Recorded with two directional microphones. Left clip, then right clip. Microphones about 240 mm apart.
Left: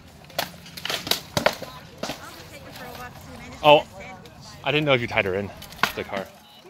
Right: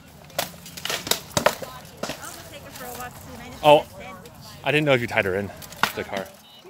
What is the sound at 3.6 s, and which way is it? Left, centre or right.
Speech, centre.